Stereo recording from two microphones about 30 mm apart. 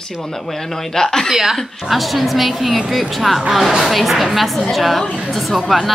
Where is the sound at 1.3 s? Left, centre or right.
Centre.